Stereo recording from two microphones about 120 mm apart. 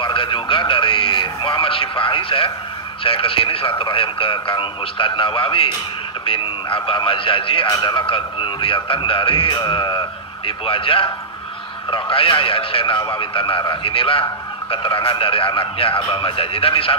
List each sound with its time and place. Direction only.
0.0 s a man's voice: 45° left (ahead or behind)